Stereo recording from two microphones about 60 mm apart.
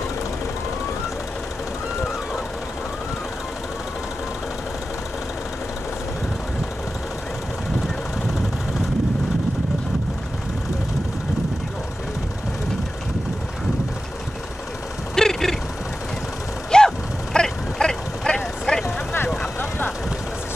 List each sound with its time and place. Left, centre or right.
15.1 s vehicle: centre
16.7 s a sound: centre
18.9 s vehicle: left